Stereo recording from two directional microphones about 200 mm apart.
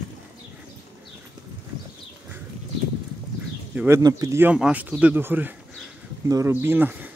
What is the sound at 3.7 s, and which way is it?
Bird, 5° right (ahead or behind).